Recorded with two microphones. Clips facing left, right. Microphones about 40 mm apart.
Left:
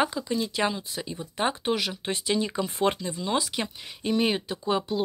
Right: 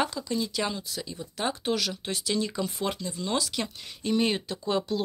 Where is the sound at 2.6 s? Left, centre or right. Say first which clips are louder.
Left 5 dB; left.